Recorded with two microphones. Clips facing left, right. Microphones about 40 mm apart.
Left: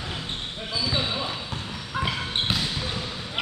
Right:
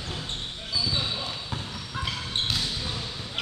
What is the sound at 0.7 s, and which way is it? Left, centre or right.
Basketball bounce, left.